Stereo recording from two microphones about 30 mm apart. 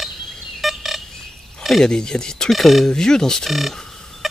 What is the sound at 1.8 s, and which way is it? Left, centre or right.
Speech, left.